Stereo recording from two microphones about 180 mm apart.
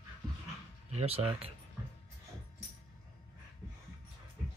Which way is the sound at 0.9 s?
35° right (ahead or behind).